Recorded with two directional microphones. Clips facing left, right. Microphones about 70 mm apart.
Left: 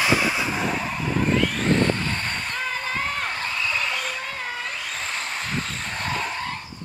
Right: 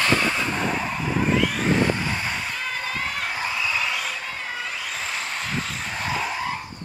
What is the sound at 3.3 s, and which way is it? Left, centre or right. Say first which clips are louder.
Skidding: right 1 dB; centre.